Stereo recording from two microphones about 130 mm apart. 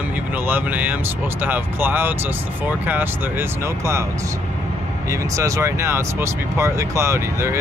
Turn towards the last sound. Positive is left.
turn(degrees=-20)  # may be behind; listen again after turning